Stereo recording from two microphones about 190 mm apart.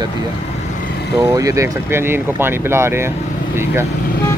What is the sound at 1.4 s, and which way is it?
Speech, 15° right (ahead or behind).